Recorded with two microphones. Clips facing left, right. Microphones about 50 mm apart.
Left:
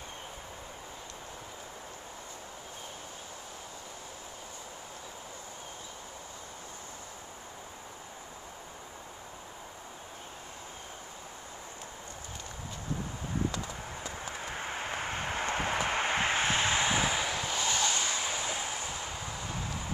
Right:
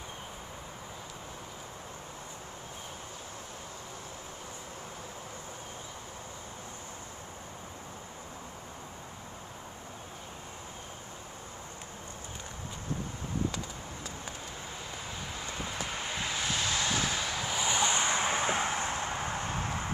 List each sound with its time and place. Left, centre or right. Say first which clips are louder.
14.5 s vehicle: left 6 dB; left; by 17.4 s centre
17.4 s vehicle: right 1 dB; centre; by 19.9 s right